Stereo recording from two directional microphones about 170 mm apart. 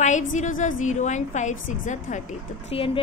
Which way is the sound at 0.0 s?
45° left (ahead or behind).